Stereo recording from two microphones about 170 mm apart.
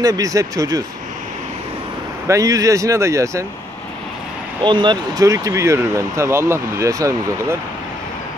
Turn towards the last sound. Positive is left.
turn(degrees=-15)  # may be behind; listen again after turning